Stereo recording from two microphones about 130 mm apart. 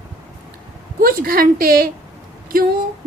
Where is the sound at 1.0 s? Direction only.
90° right.